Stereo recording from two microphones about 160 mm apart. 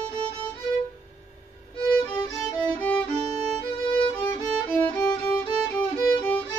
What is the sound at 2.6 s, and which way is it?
Music, 10° left (ahead or behind).